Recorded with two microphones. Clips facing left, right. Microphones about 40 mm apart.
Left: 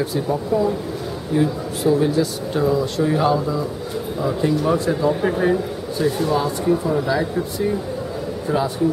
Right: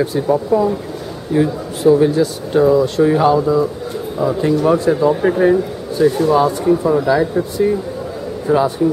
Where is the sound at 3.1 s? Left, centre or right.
Centre.